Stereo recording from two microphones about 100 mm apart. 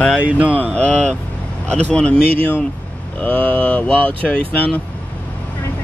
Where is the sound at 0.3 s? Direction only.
15° right (ahead or behind).